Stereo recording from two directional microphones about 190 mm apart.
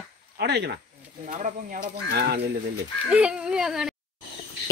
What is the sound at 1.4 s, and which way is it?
Speech, 50° right (ahead or behind).